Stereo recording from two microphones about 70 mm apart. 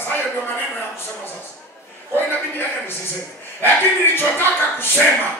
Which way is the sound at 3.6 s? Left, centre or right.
Left.